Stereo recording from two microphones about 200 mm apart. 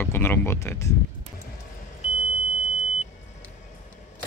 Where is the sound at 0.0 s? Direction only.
10° left (ahead or behind).